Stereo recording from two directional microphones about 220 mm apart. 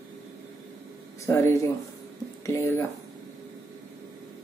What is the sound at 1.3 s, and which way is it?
Speech, 10° left (ahead or behind).